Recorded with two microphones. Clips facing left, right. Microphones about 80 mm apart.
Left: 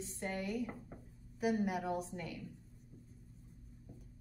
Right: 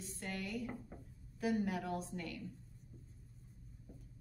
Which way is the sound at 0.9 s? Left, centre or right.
Centre.